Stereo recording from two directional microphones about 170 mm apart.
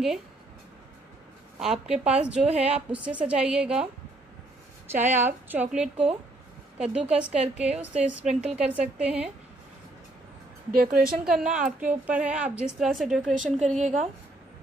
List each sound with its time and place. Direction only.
1.6 s a woman's voice: 5° right (ahead or behind)
4.9 s a woman's voice: 10° right (ahead or behind)
10.7 s speech: 55° right (ahead or behind)
11.2 s a woman's voice: 5° right (ahead or behind)
13.5 s a woman's voice: 45° right (ahead or behind)